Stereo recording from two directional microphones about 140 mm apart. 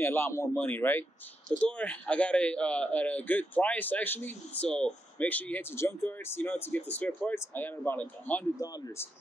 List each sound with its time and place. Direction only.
0.0 s a man's voice: 15° left (ahead or behind)
8.5 s speech: 25° left (ahead or behind)